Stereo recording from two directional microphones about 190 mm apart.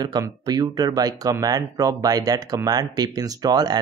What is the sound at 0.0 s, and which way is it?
Speech, 20° right (ahead or behind).